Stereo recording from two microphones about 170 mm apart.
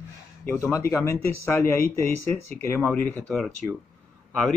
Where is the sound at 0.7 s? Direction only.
15° left (ahead or behind).